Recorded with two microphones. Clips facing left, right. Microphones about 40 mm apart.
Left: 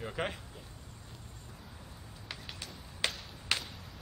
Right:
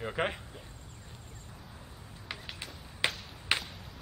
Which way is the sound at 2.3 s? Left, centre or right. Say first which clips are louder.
Right 3 dB; centre.